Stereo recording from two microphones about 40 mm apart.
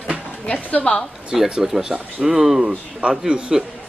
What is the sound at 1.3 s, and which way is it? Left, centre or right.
Speech, centre.